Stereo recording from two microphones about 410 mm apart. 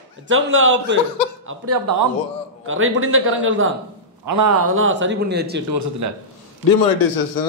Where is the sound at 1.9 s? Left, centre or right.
Right.